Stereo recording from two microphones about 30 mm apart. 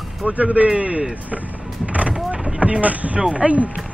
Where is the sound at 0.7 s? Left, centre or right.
Right.